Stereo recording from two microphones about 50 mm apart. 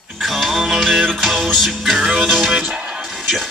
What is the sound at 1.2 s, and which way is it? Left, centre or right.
Music, centre.